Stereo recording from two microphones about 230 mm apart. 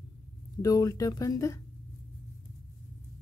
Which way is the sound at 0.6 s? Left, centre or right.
Centre.